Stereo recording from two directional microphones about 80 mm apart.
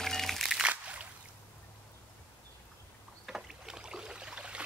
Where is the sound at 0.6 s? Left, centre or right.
Centre.